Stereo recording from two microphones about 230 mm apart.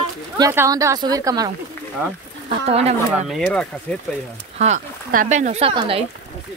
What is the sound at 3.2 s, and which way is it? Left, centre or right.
Speech, centre.